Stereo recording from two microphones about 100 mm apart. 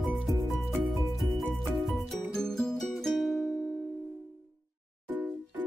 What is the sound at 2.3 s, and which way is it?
Music, 5° left (ahead or behind).